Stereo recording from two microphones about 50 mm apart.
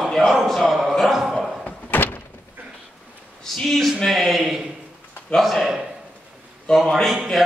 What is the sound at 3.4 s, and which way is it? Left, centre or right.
Speech, centre.